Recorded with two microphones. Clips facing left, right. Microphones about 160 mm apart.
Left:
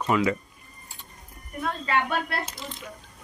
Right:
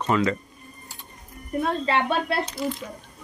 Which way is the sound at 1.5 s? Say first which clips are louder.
Right 4 dB; 30° right (ahead or behind).